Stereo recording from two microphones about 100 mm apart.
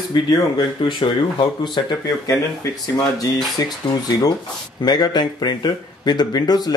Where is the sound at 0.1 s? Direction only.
50° left (ahead or behind).